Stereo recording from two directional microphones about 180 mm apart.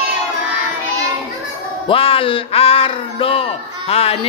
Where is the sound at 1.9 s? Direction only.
30° left (ahead or behind).